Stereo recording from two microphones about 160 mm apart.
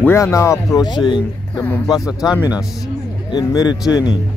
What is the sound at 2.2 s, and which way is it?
Speech, 5° right (ahead or behind).